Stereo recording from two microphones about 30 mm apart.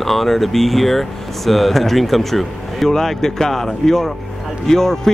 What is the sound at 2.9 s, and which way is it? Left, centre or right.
Speech, centre.